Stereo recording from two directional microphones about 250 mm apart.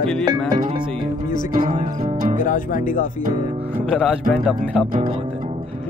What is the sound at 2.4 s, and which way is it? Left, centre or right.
Speech, left.